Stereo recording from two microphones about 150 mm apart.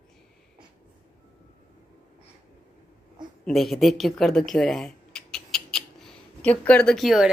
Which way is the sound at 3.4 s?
Centre (ahead or behind).